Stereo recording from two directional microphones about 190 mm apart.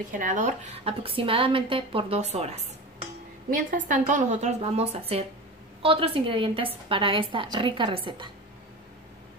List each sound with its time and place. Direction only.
0.2 s a woman's voice: 40° right (ahead or behind); by 8.3 s 25° right (ahead or behind)